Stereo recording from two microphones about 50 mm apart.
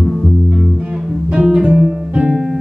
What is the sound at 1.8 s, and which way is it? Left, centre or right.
Guitar, right.